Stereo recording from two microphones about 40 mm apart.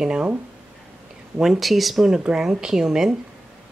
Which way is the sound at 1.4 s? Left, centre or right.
Centre.